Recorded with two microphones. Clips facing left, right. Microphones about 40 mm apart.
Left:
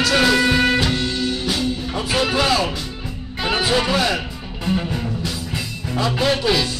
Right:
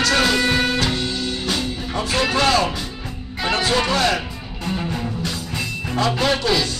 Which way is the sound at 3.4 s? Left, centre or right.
Centre.